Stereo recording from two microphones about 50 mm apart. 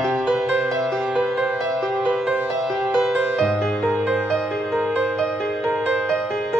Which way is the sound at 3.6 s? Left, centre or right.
Centre.